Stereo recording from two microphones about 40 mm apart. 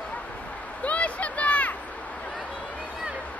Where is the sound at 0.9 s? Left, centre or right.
Left.